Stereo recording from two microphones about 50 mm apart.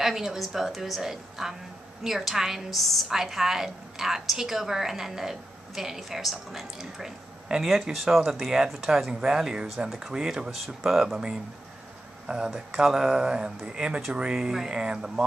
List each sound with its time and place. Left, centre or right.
0.0 s a woman's voice: centre
7.9 s a woman's voice: centre